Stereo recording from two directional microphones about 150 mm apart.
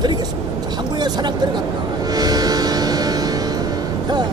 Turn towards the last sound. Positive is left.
turn(degrees=-25)  # may be behind; listen again after turning